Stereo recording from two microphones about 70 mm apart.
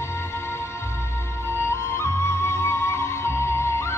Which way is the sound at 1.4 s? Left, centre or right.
Left.